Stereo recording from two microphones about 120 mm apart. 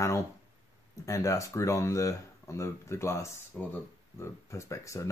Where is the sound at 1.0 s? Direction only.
25° left (ahead or behind).